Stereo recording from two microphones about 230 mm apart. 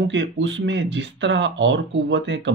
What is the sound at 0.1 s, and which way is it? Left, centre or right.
Speech, right.